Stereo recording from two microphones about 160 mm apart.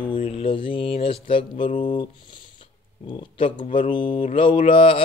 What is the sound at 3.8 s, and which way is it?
Speech, 30° left (ahead or behind).